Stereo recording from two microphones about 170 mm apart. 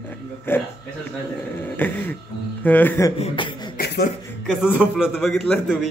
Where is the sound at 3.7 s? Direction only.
65° left (ahead or behind).